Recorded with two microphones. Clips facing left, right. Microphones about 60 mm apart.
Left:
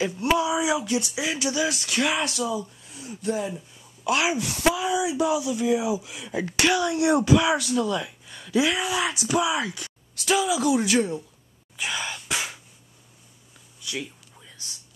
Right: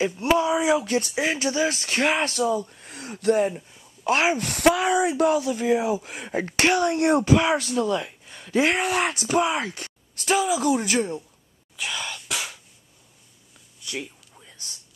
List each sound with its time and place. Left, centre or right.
0.0 s speech: right
0.4 s speech: right
2.7 s a woman's voice: right
4.4 s speech: right
7.8 s a sound: right
8.5 s speech: right
11.0 s speech: centre
11.7 s whispering: centre